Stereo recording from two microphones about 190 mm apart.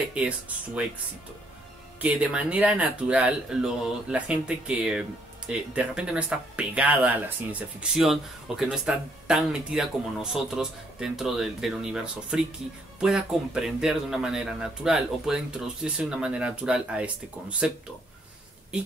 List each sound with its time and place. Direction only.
2.0 s speech: 5° right (ahead or behind)